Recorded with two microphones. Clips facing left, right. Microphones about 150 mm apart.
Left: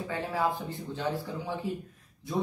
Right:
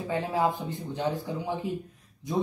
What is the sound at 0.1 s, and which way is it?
Speech, 20° right (ahead or behind).